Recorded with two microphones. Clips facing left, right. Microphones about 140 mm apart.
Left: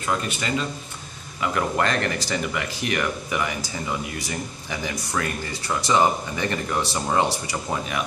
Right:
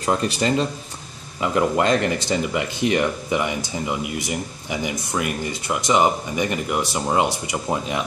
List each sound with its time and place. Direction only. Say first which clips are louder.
0.0 s speech: right 5 dB; 35° right (ahead or behind)
1.4 s speech: right 4 dB; 20° right (ahead or behind)